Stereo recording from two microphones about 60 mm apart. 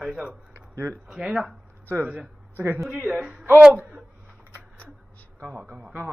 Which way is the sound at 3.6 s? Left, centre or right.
Right.